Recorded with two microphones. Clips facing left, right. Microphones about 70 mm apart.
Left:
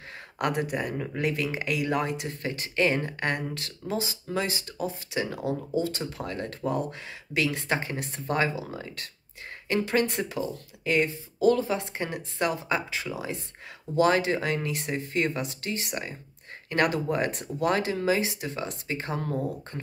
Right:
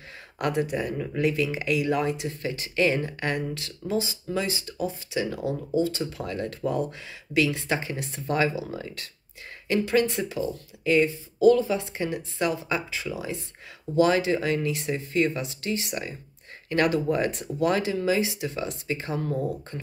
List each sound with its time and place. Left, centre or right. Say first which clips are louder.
0.4 s speech: right 2 dB; left